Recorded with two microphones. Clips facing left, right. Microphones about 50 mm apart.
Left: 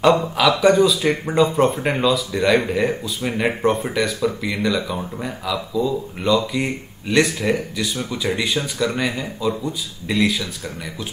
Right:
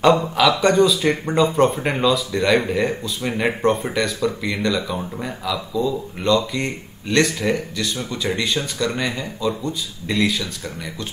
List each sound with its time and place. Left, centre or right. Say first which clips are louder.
0.0 s speech: even; centre